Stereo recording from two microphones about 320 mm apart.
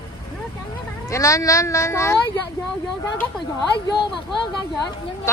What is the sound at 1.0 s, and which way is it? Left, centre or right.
A woman's voice, centre.